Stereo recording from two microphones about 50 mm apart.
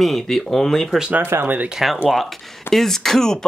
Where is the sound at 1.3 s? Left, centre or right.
Right.